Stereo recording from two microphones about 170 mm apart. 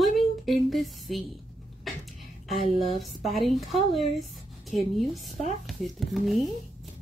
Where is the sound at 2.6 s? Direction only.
40° right (ahead or behind).